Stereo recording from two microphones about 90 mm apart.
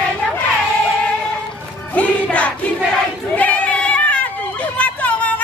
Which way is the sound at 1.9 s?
15° left (ahead or behind).